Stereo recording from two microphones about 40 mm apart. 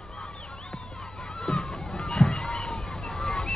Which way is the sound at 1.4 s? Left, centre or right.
Centre.